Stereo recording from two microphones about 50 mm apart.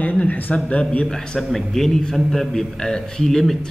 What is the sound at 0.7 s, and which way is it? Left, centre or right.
Speech, left.